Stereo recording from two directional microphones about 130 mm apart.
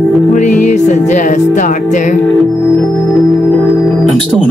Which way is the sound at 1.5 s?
70° left (ahead or behind).